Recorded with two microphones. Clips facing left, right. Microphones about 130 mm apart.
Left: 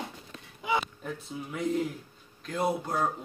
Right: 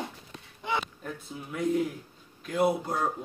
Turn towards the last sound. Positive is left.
turn(degrees=0)  # may be behind; listen again after turning